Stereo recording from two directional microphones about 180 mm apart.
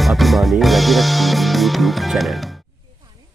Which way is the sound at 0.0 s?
Centre (ahead or behind).